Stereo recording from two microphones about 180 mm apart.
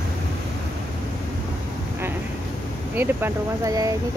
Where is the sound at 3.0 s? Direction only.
10° right (ahead or behind).